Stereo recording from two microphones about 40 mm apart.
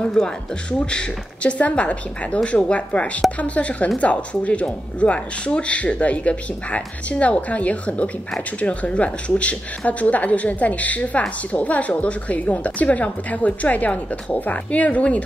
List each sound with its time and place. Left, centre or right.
0.0 s speech: left